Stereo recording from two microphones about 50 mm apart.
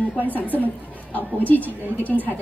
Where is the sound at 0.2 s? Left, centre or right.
Left.